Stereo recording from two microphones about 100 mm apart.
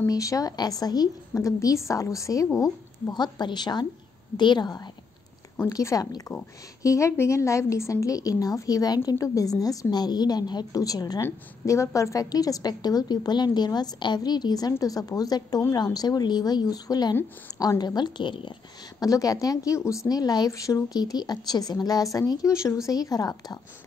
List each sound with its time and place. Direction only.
0.0 s a woman's voice: 35° left (ahead or behind); by 18.5 s 55° left (ahead or behind)
18.9 s a woman's voice: 35° left (ahead or behind)